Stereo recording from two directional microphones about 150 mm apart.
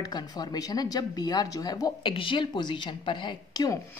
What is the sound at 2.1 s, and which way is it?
A woman's voice, 35° left (ahead or behind).